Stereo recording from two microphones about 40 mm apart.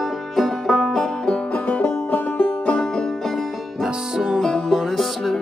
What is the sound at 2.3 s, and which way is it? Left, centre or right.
Music, left.